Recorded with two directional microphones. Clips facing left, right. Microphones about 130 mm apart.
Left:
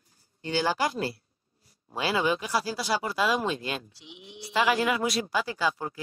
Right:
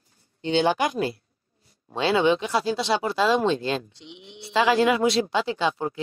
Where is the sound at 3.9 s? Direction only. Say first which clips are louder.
Right 3 dB; 5° left (ahead or behind).